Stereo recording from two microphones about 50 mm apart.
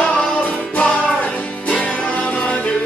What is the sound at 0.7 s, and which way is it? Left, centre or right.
Music, left.